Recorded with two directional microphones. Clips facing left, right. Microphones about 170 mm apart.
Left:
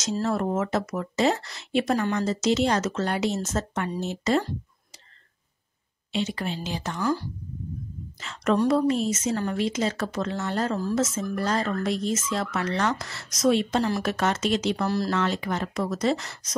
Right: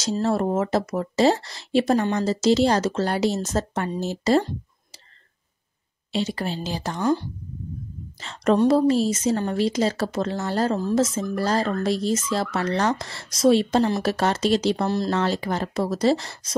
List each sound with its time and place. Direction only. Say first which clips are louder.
0.2 s speech: right 4 dB; 30° right (ahead or behind)
6.1 s speech: right 2 dB; 35° right (ahead or behind)
8.2 s speech: right 4 dB; 35° right (ahead or behind)